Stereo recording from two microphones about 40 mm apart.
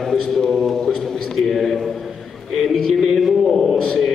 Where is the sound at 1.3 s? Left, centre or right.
Centre.